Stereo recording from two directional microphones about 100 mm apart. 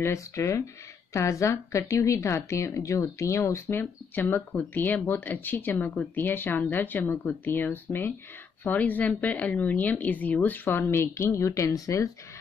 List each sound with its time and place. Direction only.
0.0 s speech: 30° left (ahead or behind)